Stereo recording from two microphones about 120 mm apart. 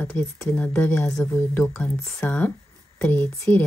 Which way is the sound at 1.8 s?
15° left (ahead or behind).